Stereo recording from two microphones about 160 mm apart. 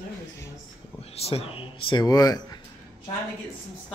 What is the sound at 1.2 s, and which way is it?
Speech, 40° left (ahead or behind).